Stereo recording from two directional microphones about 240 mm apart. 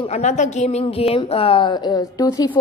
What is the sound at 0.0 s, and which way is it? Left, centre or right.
A woman's voice, left.